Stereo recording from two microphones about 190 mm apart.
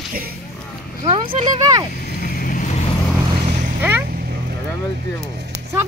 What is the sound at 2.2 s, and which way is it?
Vehicle, 50° left (ahead or behind).